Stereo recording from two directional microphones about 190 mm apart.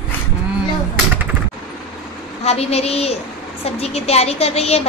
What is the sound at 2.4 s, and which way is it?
A woman's voice, 35° left (ahead or behind).